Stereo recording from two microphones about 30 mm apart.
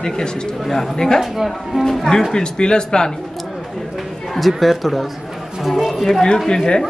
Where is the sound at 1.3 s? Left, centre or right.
Centre.